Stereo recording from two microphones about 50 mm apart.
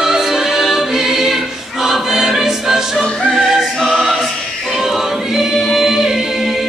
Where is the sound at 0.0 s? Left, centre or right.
Centre.